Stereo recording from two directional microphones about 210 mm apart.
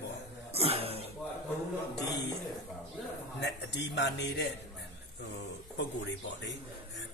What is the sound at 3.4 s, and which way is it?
Speech, 55° left (ahead or behind).